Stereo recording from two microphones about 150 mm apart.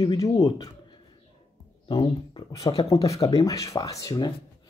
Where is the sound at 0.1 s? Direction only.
25° left (ahead or behind).